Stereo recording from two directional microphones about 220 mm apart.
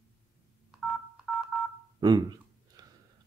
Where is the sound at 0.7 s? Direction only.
5° right (ahead or behind).